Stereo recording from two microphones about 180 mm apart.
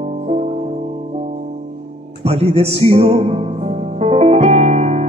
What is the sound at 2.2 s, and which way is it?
Music, 35° right (ahead or behind).